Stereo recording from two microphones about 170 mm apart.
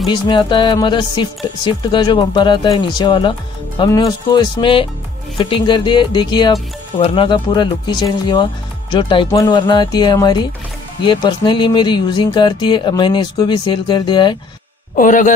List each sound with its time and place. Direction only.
0.1 s speech: 25° left (ahead or behind)
15.0 s a man's voice: 50° left (ahead or behind)